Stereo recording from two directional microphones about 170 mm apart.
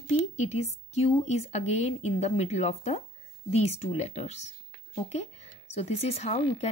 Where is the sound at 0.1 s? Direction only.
40° left (ahead or behind).